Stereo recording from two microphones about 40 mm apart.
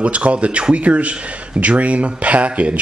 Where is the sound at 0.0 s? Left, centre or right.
Right.